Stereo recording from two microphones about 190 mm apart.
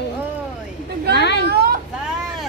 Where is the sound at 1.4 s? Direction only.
55° right (ahead or behind).